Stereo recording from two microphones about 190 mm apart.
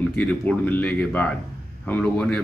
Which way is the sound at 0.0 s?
10° left (ahead or behind).